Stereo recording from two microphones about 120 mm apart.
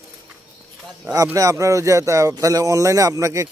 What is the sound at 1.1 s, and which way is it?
Speech, 25° right (ahead or behind).